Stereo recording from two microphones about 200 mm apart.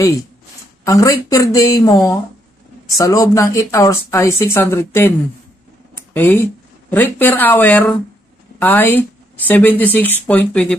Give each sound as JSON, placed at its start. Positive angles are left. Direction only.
{"t": 0.8, "sound": "speech", "side_deg": 15}
{"t": 6.1, "sound": "speech", "side_deg": 10}